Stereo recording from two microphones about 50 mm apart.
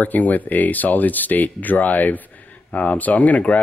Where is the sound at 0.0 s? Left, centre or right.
Left.